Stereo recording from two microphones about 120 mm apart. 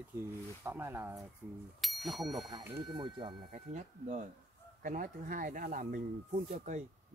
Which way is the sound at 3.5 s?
90° right.